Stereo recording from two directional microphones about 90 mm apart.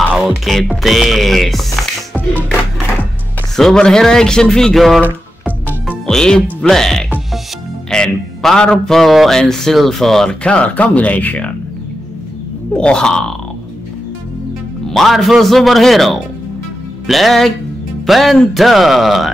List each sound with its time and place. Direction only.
0.0 s speech: centre (ahead or behind)
2.1 s music: 20° left (ahead or behind)
3.5 s speech: 5° left (ahead or behind)
5.4 s music: 5° left (ahead or behind)
6.7 s speech: 5° left (ahead or behind)
12.7 s speech: 10° left (ahead or behind)
14.9 s speech: centre (ahead or behind)